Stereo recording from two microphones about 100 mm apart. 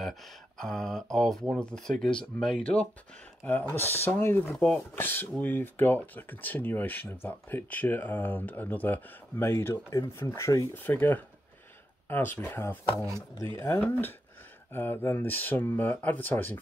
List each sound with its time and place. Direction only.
0.0 s a sound: 5° left (ahead or behind)
1.1 s speech: 5° left (ahead or behind); by 10.7 s 30° left (ahead or behind)
10.7 s speech: 20° left (ahead or behind)